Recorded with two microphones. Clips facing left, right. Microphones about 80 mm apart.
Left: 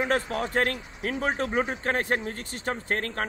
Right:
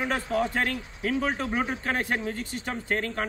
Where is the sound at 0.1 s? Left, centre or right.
Left.